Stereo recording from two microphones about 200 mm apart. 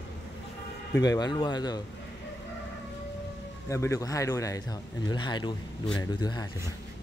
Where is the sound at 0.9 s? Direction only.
20° left (ahead or behind).